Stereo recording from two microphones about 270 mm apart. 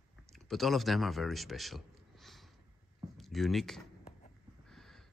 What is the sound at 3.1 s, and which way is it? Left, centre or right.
Speech, centre.